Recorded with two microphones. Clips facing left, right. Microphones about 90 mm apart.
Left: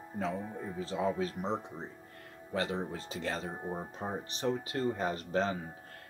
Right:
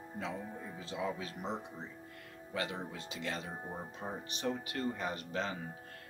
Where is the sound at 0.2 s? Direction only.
40° left (ahead or behind).